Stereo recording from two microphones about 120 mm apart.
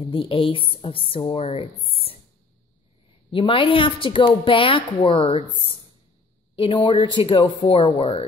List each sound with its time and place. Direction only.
0.0 s a woman's voice: 45° left (ahead or behind)
3.3 s a woman's voice: 45° left (ahead or behind)
6.5 s a woman's voice: 50° left (ahead or behind)